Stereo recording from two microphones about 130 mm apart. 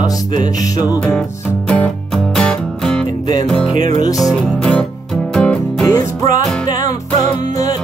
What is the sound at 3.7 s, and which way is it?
Music, 30° left (ahead or behind).